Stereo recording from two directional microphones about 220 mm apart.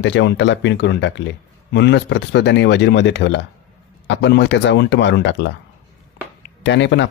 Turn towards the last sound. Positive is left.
turn(degrees=55)  # may be behind; listen again after turning